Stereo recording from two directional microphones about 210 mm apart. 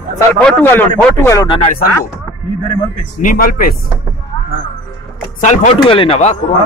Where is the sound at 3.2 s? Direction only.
40° left (ahead or behind).